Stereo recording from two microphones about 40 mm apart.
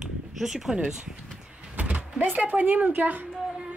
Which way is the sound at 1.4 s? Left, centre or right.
Right.